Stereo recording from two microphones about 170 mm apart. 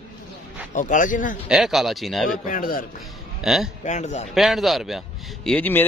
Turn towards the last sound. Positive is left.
turn(degrees=10)  # may be behind; listen again after turning